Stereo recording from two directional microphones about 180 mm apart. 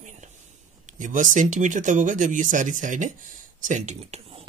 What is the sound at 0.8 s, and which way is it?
Speech, 45° right (ahead or behind).